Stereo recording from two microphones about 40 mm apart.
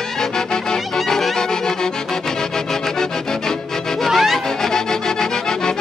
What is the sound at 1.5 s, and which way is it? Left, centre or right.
Accordion, centre.